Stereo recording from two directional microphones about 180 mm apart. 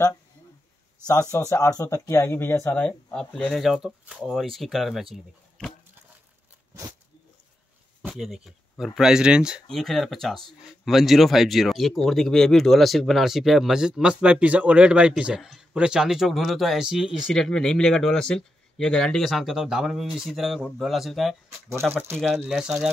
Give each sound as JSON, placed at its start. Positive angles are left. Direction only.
{"t": 1.3, "sound": "speech", "side_deg": 15}
{"t": 6.7, "sound": "a sound", "side_deg": -15}
{"t": 8.0, "sound": "speech", "side_deg": -5}
{"t": 21.6, "sound": "speech", "side_deg": -15}
{"t": 22.1, "sound": "speech", "side_deg": 0}